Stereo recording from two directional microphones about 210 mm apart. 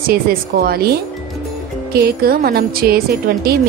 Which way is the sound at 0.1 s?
45° right (ahead or behind).